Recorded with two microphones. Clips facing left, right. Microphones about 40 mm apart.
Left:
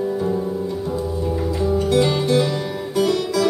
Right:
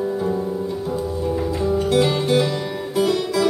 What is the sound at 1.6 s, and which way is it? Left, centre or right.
Music, centre.